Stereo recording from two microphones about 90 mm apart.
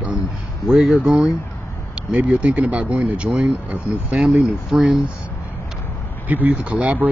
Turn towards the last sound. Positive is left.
turn(degrees=-15)  # may be behind; listen again after turning